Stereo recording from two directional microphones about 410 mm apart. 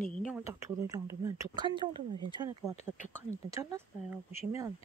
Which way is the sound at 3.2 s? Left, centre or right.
Centre.